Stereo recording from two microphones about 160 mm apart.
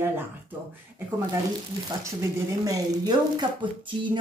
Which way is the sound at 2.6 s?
25° right (ahead or behind).